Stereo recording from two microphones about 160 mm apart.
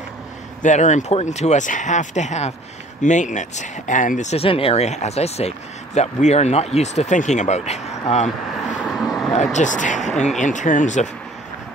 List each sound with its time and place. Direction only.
0.6 s speech: 50° left (ahead or behind)
8.6 s vehicle: 5° right (ahead or behind)
9.3 s speech: 45° left (ahead or behind)